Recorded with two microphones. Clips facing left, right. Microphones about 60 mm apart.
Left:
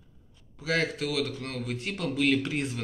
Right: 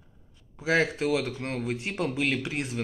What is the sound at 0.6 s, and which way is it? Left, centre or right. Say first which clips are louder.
Speech: right 3 dB; right.